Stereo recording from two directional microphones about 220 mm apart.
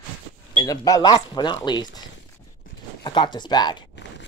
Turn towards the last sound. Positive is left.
turn(degrees=20)  # may be behind; listen again after turning